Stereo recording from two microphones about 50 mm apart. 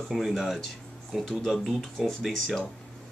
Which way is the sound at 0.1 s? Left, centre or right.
Centre.